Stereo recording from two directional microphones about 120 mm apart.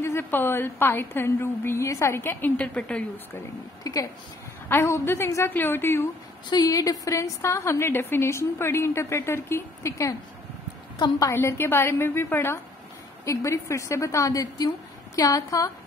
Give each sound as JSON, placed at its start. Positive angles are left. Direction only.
{"t": 0.0, "sound": "a woman's voice", "side_deg": 20}
{"t": 3.8, "sound": "a woman's voice", "side_deg": 30}
{"t": 6.5, "sound": "a woman's voice", "side_deg": 30}
{"t": 11.3, "sound": "a woman's voice", "side_deg": 20}